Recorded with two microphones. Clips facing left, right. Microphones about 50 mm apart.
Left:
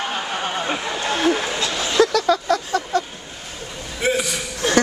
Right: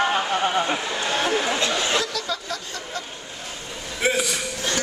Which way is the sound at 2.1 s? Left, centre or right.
Left.